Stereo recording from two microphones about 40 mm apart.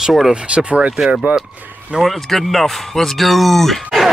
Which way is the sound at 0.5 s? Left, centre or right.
Right.